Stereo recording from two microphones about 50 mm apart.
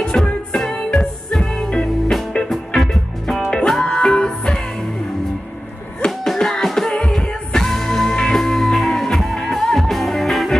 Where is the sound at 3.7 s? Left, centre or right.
Centre.